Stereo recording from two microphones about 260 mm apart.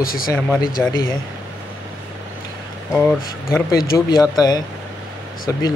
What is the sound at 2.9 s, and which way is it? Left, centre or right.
Speech, centre.